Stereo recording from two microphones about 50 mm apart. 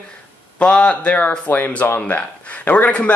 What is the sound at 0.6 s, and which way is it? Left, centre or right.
Speech, left.